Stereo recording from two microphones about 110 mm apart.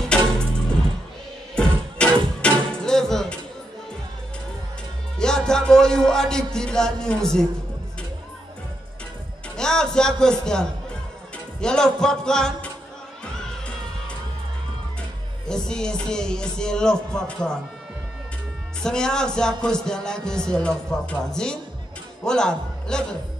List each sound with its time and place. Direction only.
1.5 s music: 10° left (ahead or behind)
5.2 s music: 5° left (ahead or behind)
9.6 s speech: 5° left (ahead or behind)
15.4 s speech: 5° left (ahead or behind)
18.8 s a man's voice: 5° left (ahead or behind)